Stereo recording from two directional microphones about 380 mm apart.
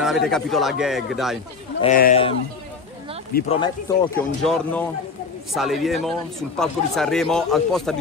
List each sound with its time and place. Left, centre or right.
0.0 s a man's voice: centre
1.8 s speech: centre
3.3 s speech: centre
4.2 s a man's voice: centre